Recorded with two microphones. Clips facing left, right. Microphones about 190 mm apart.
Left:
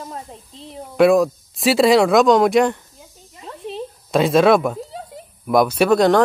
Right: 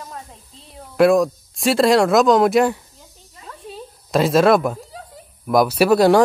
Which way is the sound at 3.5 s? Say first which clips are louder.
Left 4 dB; 25° left (ahead or behind).